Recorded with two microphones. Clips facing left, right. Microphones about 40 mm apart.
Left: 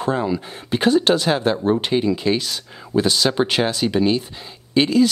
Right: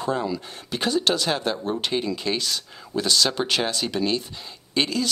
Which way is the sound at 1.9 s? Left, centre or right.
Centre.